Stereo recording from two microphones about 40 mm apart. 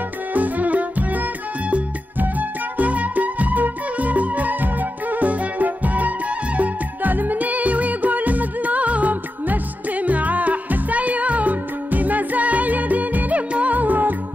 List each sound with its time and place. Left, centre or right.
0.3 s music: right